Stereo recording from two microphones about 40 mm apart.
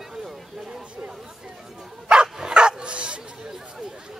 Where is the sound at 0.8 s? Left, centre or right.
Right.